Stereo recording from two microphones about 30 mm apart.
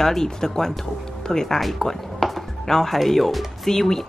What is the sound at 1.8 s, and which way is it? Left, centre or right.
Music, centre.